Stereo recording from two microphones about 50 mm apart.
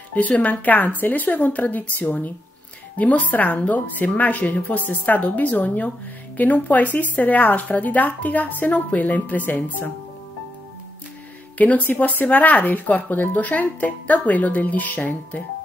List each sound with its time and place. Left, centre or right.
0.1 s speech: left
11.5 s speech: left